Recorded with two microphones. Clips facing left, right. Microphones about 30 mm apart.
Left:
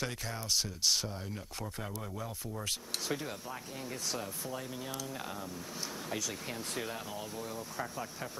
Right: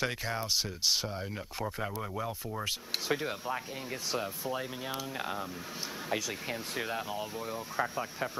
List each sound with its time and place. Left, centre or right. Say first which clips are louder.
0.0 s speech: right 5 dB; right